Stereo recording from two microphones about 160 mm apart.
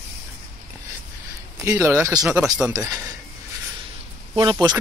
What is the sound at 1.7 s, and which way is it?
Speech, 10° right (ahead or behind).